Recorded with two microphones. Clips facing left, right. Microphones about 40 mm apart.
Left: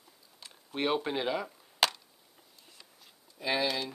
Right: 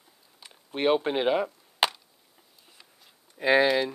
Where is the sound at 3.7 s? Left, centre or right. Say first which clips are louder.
Right 9 dB; right.